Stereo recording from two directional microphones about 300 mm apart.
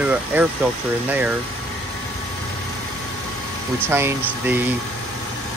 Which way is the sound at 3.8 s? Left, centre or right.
Centre.